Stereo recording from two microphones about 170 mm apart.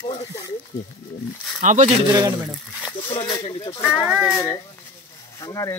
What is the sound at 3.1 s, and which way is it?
Speech, 30° left (ahead or behind).